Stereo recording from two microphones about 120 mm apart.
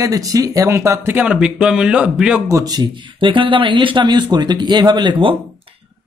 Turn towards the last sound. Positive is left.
turn(degrees=-45)  # may be behind; listen again after turning